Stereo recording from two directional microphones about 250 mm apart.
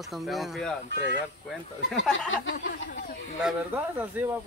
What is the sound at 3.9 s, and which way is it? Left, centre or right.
Speech, centre.